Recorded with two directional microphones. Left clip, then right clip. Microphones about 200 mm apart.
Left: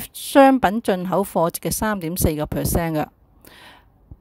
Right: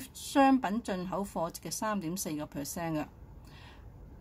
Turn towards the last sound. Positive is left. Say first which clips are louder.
# left 13 dB
turn(degrees=50)  # may be behind; listen again after turning